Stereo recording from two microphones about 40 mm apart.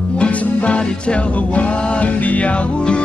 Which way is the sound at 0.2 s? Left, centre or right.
Left.